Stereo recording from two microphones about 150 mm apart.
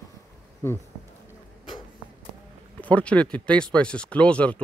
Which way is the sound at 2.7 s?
10° left (ahead or behind).